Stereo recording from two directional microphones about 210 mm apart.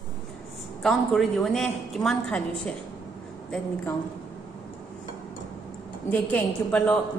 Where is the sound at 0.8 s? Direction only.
Centre (ahead or behind).